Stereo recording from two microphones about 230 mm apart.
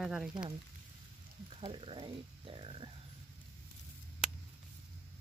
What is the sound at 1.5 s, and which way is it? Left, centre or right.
Speech, right.